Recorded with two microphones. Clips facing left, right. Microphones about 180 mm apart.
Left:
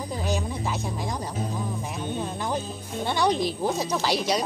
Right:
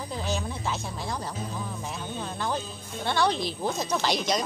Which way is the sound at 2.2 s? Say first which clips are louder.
Right 2 dB; 15° left (ahead or behind).